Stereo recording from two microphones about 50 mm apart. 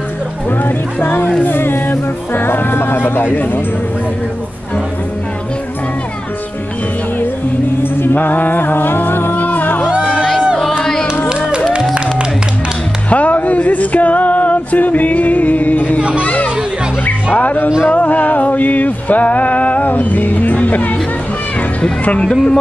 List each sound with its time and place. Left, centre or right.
0.5 s music: left
7.8 s music: left
10.8 s music: centre
13.1 s a sound: left
16.2 s chatter: left
17.0 s music: left
22.2 s speech: centre